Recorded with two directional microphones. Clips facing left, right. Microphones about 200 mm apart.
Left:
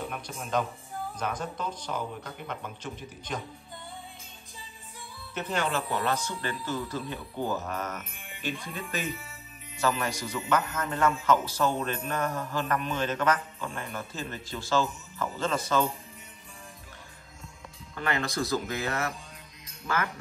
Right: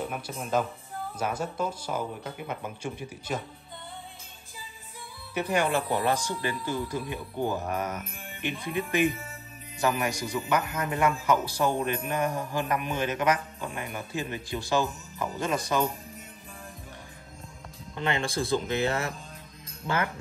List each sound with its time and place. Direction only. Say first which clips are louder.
0.0 s a man's voice: right 3 dB; centre (ahead or behind)
5.3 s a man's voice: right 4 dB; 10° right (ahead or behind)
17.9 s speech: right 1 dB; 25° right (ahead or behind)